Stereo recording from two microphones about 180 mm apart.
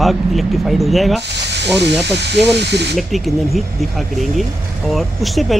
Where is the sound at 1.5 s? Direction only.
70° right (ahead or behind).